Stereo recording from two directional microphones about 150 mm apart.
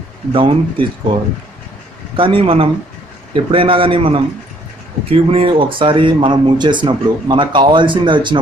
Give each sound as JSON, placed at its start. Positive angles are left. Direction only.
{"t": 0.3, "sound": "speech", "side_deg": -35}
{"t": 2.1, "sound": "speech", "side_deg": -35}